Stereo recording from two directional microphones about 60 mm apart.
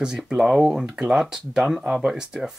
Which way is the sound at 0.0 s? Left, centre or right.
Centre.